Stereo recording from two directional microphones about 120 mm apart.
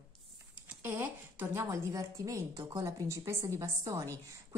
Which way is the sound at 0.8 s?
15° right (ahead or behind).